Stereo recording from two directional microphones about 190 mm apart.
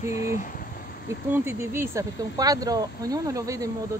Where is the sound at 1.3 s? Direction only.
15° right (ahead or behind).